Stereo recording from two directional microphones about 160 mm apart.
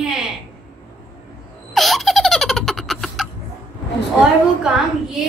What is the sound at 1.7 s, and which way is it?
Baby laughter, centre (ahead or behind).